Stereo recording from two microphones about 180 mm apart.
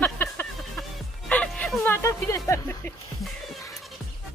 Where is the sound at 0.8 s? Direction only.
5° left (ahead or behind).